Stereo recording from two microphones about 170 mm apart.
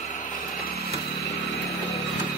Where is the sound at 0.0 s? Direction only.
50° left (ahead or behind).